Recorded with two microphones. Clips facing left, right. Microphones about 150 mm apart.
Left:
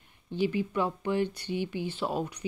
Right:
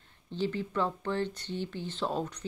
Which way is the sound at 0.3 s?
10° left (ahead or behind).